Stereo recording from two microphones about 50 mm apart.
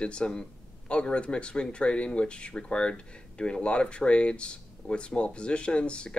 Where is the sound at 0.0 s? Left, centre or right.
Centre.